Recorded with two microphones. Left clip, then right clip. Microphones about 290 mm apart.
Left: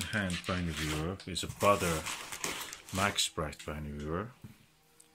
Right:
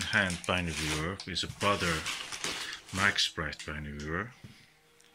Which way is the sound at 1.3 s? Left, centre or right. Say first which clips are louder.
Left 2 dB; centre.